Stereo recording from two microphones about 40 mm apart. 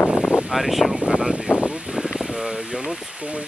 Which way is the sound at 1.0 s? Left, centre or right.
Centre.